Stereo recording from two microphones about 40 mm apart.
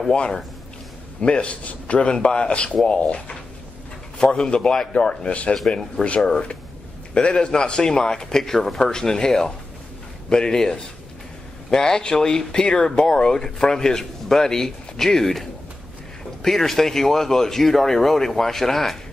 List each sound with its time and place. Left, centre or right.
0.1 s speech: left; by 15.4 s centre
16.4 s speech: centre